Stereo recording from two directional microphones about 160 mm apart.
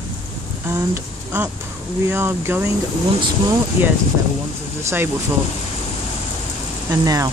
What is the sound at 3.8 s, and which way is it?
Speech, 15° right (ahead or behind).